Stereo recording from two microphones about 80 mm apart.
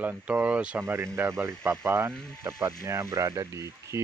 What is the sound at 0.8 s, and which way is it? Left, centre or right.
Speech, right.